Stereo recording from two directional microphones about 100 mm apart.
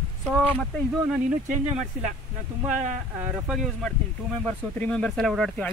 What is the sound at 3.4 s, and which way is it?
Speech, 5° right (ahead or behind).